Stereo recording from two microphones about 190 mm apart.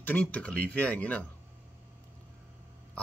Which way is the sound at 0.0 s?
5° left (ahead or behind).